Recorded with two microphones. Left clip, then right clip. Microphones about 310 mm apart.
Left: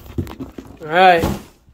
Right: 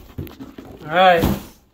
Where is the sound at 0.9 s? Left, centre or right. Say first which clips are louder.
Left 2 dB; left.